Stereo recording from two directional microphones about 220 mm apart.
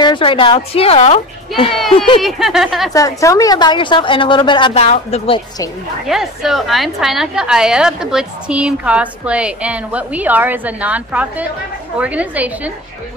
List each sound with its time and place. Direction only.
0.0 s a woman's voice: 20° left (ahead or behind)
2.2 s a woman's voice: centre (ahead or behind)
2.9 s a woman's voice: 15° left (ahead or behind)
6.0 s a woman's voice: centre (ahead or behind)